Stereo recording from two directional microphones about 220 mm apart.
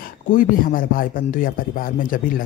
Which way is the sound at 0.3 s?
40° left (ahead or behind).